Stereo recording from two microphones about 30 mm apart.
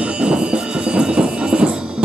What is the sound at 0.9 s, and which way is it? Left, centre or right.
Train, right.